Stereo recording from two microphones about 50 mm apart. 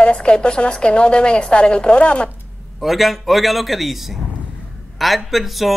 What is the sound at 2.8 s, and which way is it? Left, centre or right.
Speech, centre.